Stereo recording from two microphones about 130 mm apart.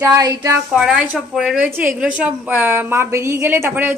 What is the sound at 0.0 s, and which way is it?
Speech, 25° right (ahead or behind).